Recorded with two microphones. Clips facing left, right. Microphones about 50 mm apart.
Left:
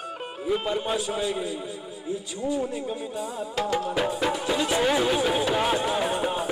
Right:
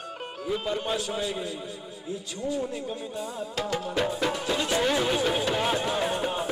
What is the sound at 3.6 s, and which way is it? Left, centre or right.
Music, centre.